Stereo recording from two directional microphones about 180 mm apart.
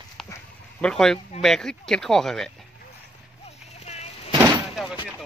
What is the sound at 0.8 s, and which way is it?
Speech, 5° left (ahead or behind).